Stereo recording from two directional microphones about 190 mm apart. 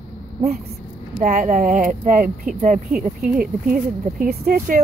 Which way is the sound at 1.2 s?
45° right (ahead or behind).